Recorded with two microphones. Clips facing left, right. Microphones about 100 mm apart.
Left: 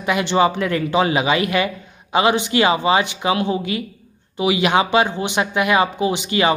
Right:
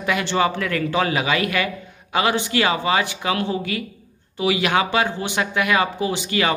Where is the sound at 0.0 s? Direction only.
20° left (ahead or behind).